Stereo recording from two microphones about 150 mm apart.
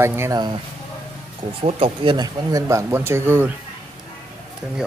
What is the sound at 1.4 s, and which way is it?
Speech, 40° right (ahead or behind).